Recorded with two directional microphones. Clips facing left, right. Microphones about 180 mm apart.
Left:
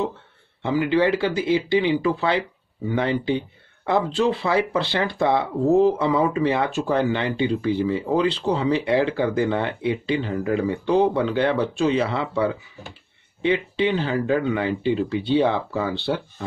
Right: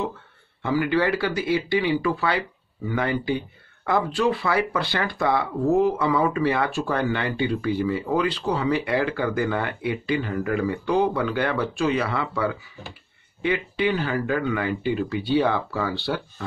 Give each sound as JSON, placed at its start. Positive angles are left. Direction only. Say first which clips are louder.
{"t": 0.6, "sound": "speech", "louder": "left 2 dB", "side_deg": 20}